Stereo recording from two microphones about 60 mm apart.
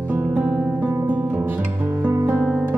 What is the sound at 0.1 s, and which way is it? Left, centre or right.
Music, right.